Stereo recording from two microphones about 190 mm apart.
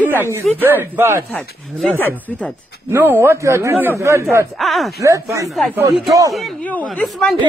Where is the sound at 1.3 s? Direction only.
5° left (ahead or behind).